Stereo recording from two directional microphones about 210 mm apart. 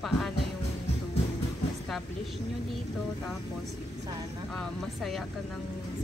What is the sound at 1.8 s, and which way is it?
Speech, centre (ahead or behind).